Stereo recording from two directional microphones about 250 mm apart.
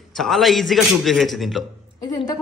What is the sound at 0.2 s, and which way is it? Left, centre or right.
A man's voice, centre.